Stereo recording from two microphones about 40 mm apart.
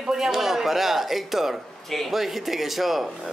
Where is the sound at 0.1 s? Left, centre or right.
Centre.